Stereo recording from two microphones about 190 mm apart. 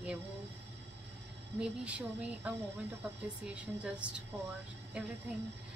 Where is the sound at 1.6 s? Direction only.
5° right (ahead or behind).